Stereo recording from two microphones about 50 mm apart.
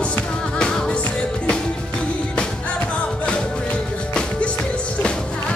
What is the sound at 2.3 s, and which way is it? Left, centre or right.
Music, left.